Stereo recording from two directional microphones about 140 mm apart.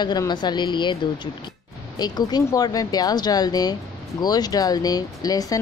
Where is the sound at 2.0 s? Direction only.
30° left (ahead or behind).